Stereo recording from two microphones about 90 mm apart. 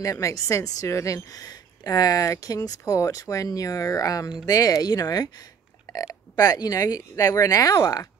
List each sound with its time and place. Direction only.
0.0 s a woman's voice: 35° left (ahead or behind)
5.9 s burping: 45° left (ahead or behind)
6.3 s a woman's voice: 45° left (ahead or behind)